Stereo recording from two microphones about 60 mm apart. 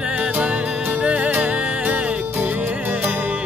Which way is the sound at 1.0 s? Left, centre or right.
Right.